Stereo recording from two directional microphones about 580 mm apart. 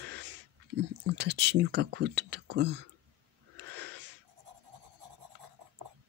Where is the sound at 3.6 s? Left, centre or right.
Centre.